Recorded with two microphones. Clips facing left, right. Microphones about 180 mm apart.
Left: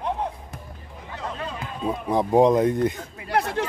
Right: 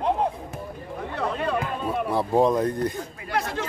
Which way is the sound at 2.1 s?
15° left (ahead or behind).